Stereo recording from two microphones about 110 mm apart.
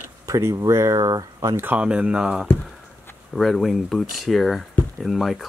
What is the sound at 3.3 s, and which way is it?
Speech, centre (ahead or behind).